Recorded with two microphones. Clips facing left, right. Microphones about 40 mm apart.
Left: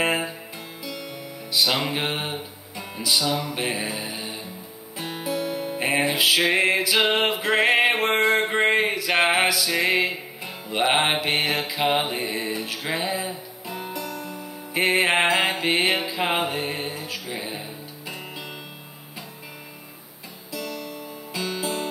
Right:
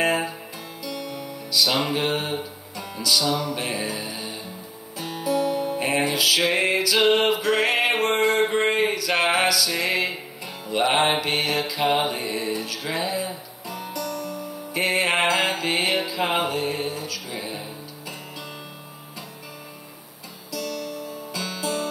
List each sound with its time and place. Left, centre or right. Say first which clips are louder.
0.8 s music: right 4 dB; centre
2.0 s music: right 2 dB; left
7.3 s a sound: left 2 dB; left
8.8 s music: left 1 dB; left
20.5 s music: right 2 dB; left